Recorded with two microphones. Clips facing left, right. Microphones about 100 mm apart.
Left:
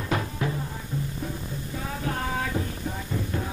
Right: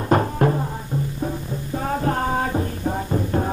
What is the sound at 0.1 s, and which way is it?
Music, 45° right (ahead or behind).